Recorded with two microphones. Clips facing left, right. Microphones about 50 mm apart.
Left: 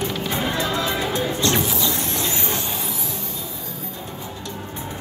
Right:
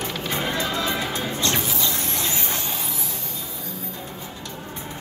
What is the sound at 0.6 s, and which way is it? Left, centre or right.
Music, left.